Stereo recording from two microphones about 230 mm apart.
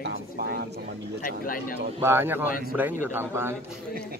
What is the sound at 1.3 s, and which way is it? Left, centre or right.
Speech, left.